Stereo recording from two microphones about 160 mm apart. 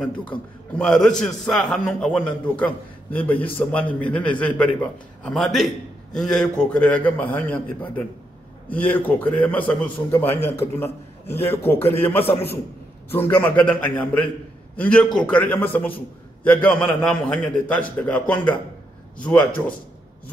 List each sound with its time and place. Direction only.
0.0 s a man's voice: 5° left (ahead or behind)